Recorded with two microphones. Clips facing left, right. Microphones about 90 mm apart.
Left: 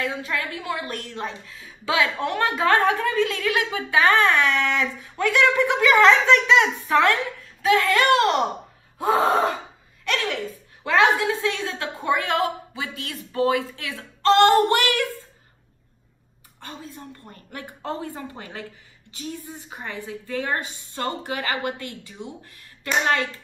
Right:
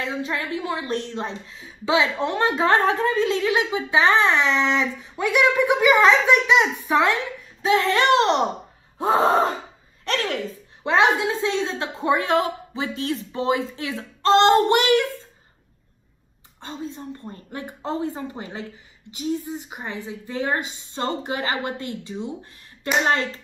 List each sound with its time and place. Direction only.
0.0 s a woman's voice: 25° right (ahead or behind)
10.0 s a woman's voice: 40° right (ahead or behind)
10.8 s a woman's voice: 20° right (ahead or behind)
16.6 s a woman's voice: 25° right (ahead or behind)